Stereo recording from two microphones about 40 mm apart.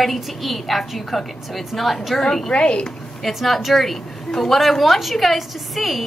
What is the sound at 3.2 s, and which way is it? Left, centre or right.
A woman's voice, centre.